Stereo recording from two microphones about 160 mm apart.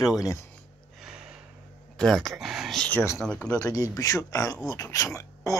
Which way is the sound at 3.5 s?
20° left (ahead or behind).